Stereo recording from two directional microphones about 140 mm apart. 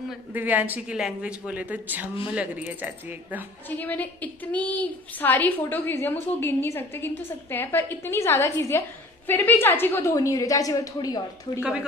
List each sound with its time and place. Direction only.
0.3 s speech: 10° right (ahead or behind)
3.6 s a woman's voice: 15° left (ahead or behind)